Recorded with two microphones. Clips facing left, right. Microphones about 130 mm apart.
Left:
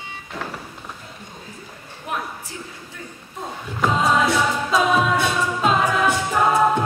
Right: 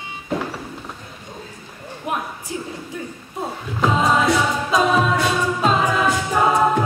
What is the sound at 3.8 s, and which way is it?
A capella, centre (ahead or behind).